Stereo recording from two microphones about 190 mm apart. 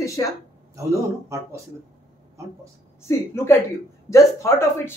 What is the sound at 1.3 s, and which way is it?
Speech, 15° right (ahead or behind).